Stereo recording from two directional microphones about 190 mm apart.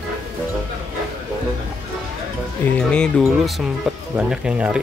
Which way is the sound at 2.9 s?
5° left (ahead or behind).